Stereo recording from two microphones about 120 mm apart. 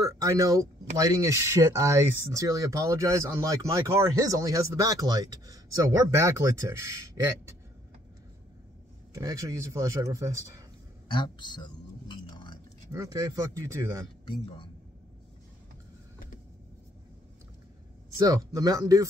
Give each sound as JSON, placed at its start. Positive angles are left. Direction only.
{"t": 0.0, "sound": "speech", "side_deg": -30}
{"t": 9.1, "sound": "speech", "side_deg": -30}
{"t": 11.1, "sound": "speech", "side_deg": 40}
{"t": 12.1, "sound": "a sound", "side_deg": 40}
{"t": 12.9, "sound": "speech", "side_deg": -30}
{"t": 18.1, "sound": "speech", "side_deg": -30}